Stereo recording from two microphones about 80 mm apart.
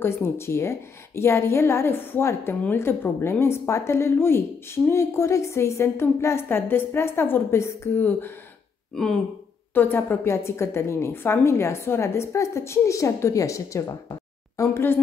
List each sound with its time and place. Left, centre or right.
0.0 s a woman's voice: left
9.8 s a woman's voice: left
14.6 s a woman's voice: left